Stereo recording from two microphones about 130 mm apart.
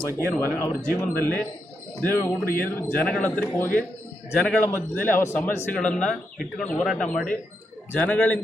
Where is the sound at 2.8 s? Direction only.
10° left (ahead or behind).